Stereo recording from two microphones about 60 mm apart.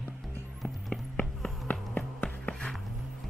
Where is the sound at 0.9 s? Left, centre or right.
Left.